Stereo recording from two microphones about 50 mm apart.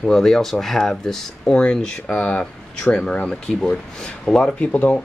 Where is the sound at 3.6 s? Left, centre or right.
Centre.